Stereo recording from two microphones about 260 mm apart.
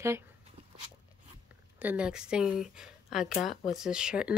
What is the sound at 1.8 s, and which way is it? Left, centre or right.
Speech, centre.